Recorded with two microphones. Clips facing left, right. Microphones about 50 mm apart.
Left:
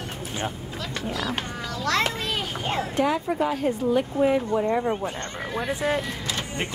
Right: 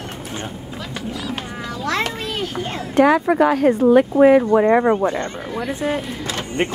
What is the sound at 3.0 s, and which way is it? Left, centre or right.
Speech, right.